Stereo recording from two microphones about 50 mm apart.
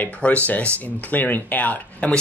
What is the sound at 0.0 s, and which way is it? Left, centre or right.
Speech, left.